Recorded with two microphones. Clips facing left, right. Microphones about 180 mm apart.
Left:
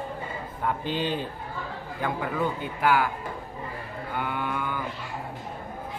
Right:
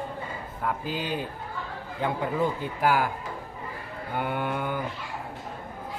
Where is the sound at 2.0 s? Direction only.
25° right (ahead or behind).